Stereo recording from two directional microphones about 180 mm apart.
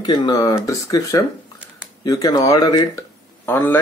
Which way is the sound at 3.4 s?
10° left (ahead or behind).